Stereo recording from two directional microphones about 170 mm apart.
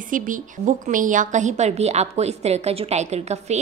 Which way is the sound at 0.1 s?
50° right (ahead or behind).